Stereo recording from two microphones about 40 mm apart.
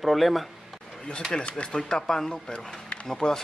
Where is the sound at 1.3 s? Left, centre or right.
Left.